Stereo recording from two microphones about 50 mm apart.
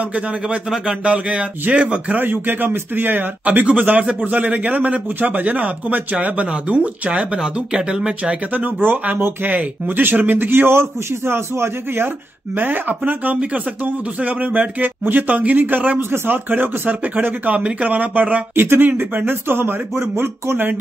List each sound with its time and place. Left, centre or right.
0.7 s a man's voice: centre
2.1 s speech: right; by 8.1 s centre
8.5 s speech: right
12.5 s speech: right
16.0 s a man's voice: right
18.5 s speech: right